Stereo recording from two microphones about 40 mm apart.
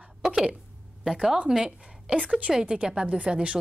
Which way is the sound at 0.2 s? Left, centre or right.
Centre.